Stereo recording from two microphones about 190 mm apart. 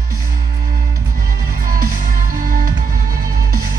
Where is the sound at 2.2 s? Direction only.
45° right (ahead or behind).